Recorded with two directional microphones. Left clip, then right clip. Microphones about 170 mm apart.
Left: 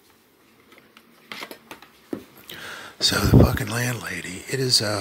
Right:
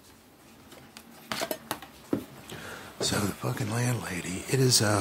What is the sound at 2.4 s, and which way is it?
Speech, 25° left (ahead or behind).